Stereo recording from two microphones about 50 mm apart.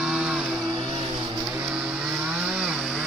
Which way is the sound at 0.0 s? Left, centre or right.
Centre.